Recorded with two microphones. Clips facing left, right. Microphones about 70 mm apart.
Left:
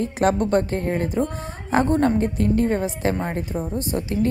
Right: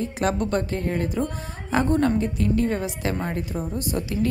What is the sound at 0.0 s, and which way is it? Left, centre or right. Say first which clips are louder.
A woman's voice: left 4 dB; left.